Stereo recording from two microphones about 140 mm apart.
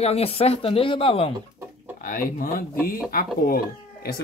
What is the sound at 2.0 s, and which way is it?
Speech, 80° left.